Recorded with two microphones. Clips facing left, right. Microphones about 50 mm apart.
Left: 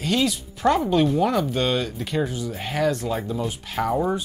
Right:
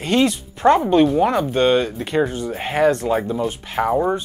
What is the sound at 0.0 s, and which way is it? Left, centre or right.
Speech, right.